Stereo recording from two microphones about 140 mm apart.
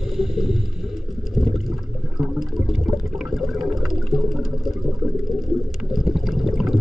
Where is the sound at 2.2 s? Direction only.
Centre (ahead or behind).